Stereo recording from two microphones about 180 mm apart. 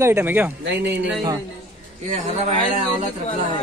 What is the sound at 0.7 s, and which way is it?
Speech, 70° right (ahead or behind).